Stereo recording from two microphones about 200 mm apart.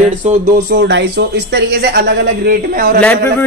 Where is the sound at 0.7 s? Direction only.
60° right (ahead or behind).